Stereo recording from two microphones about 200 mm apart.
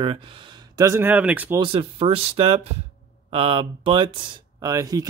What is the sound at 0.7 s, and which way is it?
Speech, 15° right (ahead or behind).